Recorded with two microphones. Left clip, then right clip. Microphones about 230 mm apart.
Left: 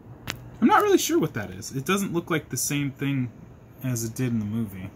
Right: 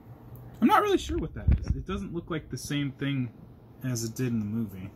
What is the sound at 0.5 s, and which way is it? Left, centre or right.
Speech, centre.